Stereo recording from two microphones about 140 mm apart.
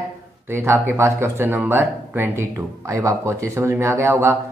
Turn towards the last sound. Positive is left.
turn(degrees=-20)  # may be behind; listen again after turning